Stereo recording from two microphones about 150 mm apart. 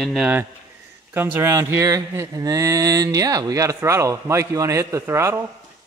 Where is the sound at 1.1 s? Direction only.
15° right (ahead or behind).